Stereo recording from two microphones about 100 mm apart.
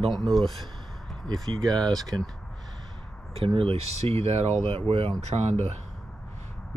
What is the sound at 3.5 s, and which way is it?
Speech, 70° right (ahead or behind).